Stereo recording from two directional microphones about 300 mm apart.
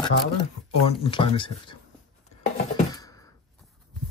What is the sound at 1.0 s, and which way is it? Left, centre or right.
Speech, centre.